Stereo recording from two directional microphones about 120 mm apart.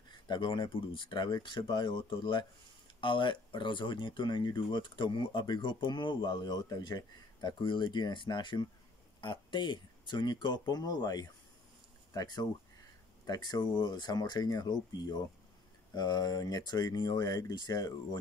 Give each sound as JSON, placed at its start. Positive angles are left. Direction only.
{"t": 0.1, "sound": "speech", "side_deg": 40}